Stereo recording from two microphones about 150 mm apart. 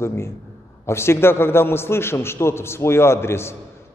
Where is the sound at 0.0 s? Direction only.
15° left (ahead or behind).